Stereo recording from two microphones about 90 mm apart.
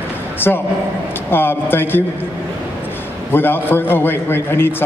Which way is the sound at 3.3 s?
25° left (ahead or behind).